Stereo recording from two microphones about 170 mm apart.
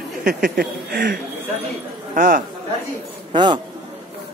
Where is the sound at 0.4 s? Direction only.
60° right (ahead or behind).